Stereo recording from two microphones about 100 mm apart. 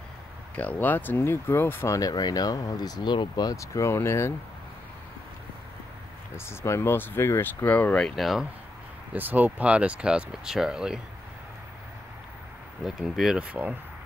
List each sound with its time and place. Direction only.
0.6 s speech: 15° left (ahead or behind)
6.3 s speech: 25° left (ahead or behind); by 8.5 s centre (ahead or behind)
9.1 s speech: 20° right (ahead or behind)
12.8 s speech: centre (ahead or behind)